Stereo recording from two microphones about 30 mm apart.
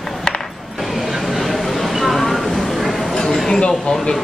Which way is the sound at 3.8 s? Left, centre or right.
Centre.